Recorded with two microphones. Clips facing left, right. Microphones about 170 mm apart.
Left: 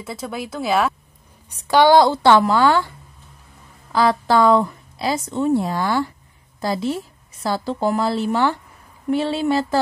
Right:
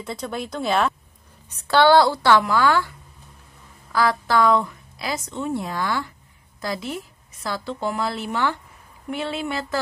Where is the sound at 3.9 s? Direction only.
25° left (ahead or behind).